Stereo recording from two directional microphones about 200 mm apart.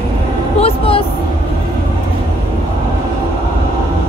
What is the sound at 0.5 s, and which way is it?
Speech, 30° left (ahead or behind).